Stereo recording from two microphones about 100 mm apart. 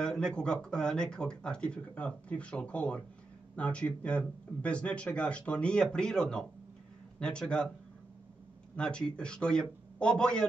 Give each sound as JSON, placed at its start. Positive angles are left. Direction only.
{"t": 0.0, "sound": "speech", "side_deg": 10}
{"t": 8.7, "sound": "speech", "side_deg": 10}